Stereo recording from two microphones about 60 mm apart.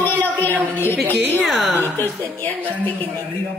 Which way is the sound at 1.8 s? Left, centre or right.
Left.